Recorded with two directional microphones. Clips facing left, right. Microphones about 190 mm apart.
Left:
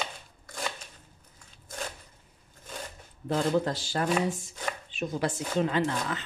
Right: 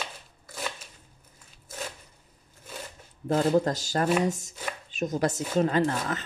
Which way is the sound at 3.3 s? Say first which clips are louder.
Right 3 dB; 45° right (ahead or behind).